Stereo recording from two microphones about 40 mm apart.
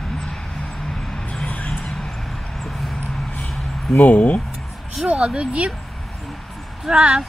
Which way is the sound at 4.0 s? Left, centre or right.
Left.